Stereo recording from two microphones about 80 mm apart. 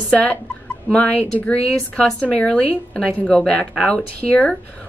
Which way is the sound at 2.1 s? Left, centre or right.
Centre.